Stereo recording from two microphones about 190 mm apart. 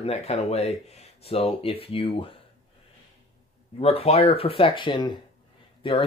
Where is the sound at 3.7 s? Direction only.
30° left (ahead or behind).